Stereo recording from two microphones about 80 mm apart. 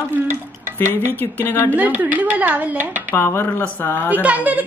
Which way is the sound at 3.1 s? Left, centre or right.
Left.